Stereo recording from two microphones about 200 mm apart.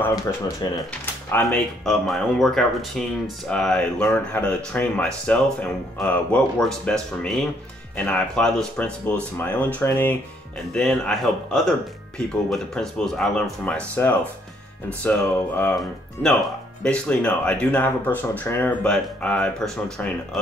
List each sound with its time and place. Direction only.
0.6 s speech: 20° left (ahead or behind)
1.3 s speech: 5° left (ahead or behind)